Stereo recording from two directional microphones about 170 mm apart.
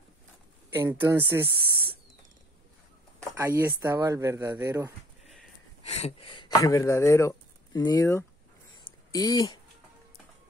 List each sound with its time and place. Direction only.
0.7 s speech: 15° right (ahead or behind)
3.3 s speech: 15° right (ahead or behind)
5.9 s speech: 40° left (ahead or behind); by 9.6 s 20° left (ahead or behind)